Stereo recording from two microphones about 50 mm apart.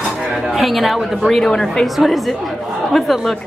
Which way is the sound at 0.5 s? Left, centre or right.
Centre.